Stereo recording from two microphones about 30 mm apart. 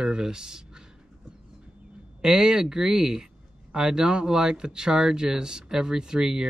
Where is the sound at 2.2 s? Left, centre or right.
Right.